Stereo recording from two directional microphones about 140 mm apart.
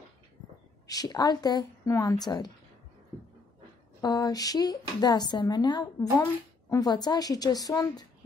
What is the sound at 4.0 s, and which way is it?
A woman's voice, 30° left (ahead or behind).